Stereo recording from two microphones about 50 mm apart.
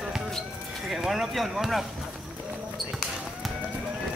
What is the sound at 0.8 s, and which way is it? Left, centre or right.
Speech, centre.